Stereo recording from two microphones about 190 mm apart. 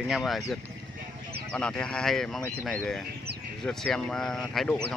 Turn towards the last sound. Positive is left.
turn(degrees=0)  # may be behind; listen again after turning